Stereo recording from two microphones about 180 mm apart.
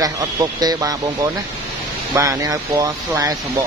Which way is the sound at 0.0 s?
20° right (ahead or behind).